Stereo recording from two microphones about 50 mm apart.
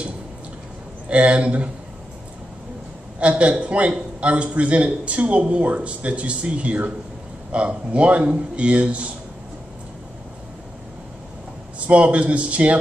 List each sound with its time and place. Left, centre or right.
1.0 s a man's voice: right
3.2 s a man's voice: right
11.9 s a man's voice: right